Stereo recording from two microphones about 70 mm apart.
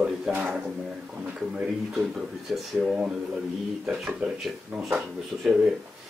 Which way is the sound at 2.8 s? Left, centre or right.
Centre.